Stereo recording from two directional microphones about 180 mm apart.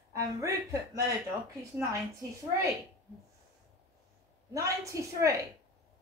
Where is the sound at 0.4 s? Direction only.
15° right (ahead or behind).